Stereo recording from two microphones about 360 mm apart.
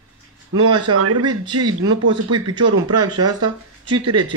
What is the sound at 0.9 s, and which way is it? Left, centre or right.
Speech, right.